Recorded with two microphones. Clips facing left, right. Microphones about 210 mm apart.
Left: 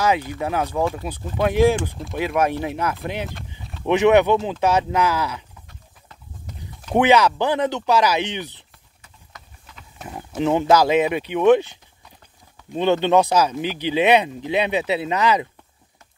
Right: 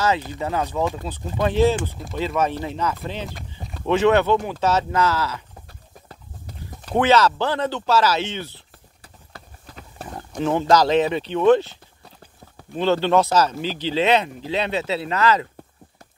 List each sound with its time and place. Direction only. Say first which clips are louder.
0.4 s speech: left 1 dB; 10° left (ahead or behind)
5.7 s horse: right 4 dB; 35° right (ahead or behind)
7.0 s speech: left 1 dB; 15° left (ahead or behind)
9.0 s clip-clop: right 3 dB; 35° right (ahead or behind)
10.0 s speech: left 2 dB; 10° left (ahead or behind)